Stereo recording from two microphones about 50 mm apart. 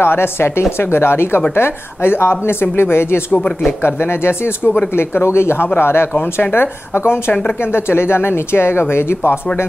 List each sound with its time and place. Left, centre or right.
0.0 s speech: left